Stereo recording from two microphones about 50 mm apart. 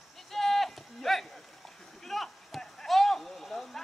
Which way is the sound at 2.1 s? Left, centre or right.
Centre.